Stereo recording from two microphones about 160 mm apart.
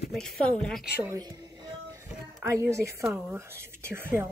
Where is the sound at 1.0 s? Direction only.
20° right (ahead or behind).